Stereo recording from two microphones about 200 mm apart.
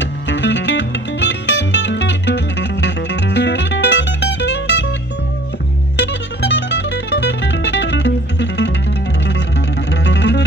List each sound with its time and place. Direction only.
0.0 s music: 60° left (ahead or behind)
5.9 s music: 60° left (ahead or behind)
9.8 s music: 60° left (ahead or behind)